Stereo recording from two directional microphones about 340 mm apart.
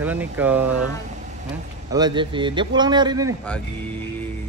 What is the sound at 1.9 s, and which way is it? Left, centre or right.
A man's voice, centre.